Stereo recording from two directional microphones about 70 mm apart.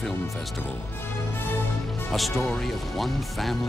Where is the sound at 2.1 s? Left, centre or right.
Centre.